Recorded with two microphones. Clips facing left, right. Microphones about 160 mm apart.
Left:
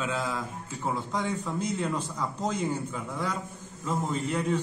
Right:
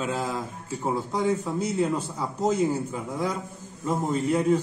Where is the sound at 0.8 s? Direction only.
10° right (ahead or behind).